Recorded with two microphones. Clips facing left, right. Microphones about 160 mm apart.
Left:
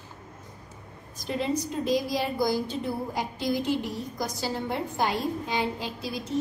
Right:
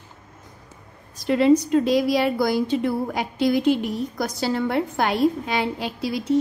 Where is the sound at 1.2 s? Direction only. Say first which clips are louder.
Right 11 dB; 85° right.